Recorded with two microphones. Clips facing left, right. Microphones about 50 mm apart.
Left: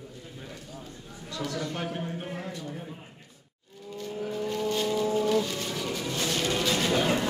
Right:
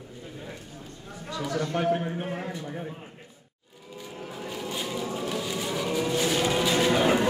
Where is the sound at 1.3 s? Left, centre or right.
Centre.